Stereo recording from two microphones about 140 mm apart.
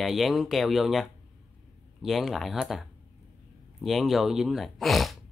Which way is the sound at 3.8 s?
Centre (ahead or behind).